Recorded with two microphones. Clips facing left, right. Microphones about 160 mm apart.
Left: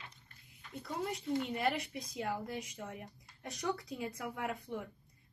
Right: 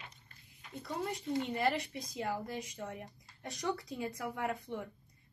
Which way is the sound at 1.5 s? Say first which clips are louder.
Right 2 dB; centre (ahead or behind).